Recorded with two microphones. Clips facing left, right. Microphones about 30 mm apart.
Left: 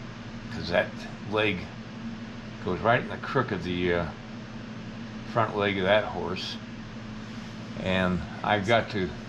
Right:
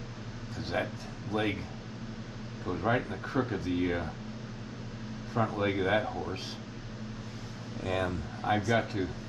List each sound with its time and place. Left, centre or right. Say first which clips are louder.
0.6 s a man's voice: left 7 dB; left
2.6 s a man's voice: left 5 dB; left
5.3 s a man's voice: left 4 dB; left
7.8 s a man's voice: left 5 dB; left